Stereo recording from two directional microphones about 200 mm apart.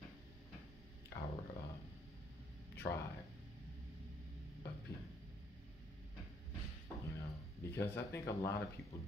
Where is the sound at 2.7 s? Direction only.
15° left (ahead or behind).